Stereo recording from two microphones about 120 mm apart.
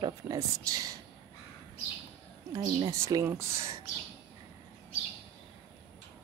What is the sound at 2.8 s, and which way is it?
Speech, 25° right (ahead or behind).